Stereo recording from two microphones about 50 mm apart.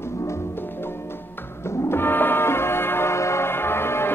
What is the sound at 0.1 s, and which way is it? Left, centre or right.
Music, left.